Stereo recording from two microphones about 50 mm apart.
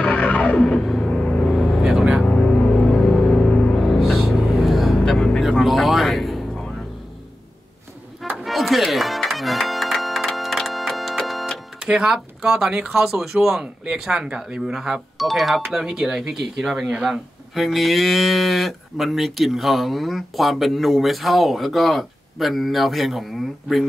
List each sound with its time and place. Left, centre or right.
0.0 s music: left
0.6 s music: centre
1.5 s vehicle: centre
1.9 s vehicle: centre
2.2 s music: left
3.7 s music: centre
4.0 s music: centre
5.5 s a sound: centre
8.5 s music: centre
11.8 s speech: centre
15.1 s speech: centre